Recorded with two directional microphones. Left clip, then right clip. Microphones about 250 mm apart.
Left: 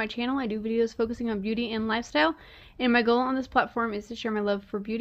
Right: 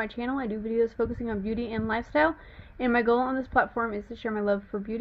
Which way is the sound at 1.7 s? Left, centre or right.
Left.